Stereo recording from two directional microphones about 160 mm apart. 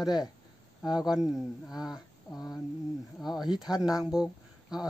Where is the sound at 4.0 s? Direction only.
5° right (ahead or behind).